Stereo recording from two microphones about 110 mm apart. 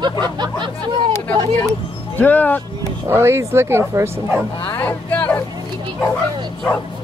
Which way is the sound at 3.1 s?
20° right (ahead or behind).